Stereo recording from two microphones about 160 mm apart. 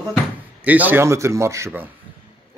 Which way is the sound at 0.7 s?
10° right (ahead or behind).